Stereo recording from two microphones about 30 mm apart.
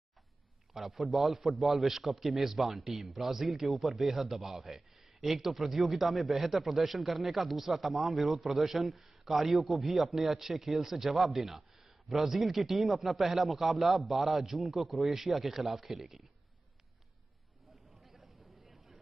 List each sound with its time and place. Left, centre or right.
0.7 s a man's voice: centre
2.8 s speech: right
3.1 s a man's voice: centre
18.1 s a sound: centre